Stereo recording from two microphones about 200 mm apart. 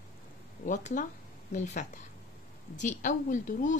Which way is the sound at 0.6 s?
40° left (ahead or behind).